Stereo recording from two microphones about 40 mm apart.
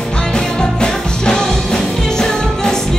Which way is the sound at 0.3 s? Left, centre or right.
Centre.